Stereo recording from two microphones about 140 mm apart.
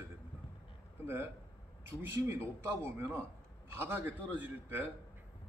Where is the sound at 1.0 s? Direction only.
15° right (ahead or behind).